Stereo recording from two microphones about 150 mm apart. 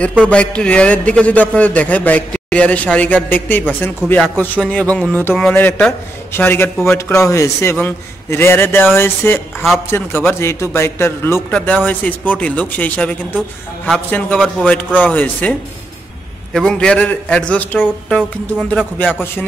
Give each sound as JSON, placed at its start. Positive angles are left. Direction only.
{"t": 0.2, "sound": "a man's voice", "side_deg": 5}
{"t": 16.5, "sound": "a man's voice", "side_deg": 5}